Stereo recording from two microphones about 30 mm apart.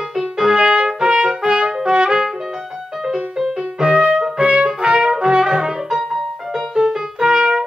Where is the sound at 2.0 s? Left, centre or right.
Right.